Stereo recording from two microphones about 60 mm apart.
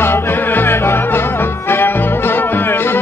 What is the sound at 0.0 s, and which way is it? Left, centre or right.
Music, left.